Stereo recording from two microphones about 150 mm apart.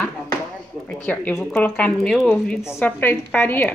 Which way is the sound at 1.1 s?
10° left (ahead or behind).